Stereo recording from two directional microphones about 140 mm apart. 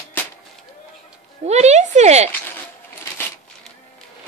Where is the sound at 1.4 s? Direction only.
50° right (ahead or behind).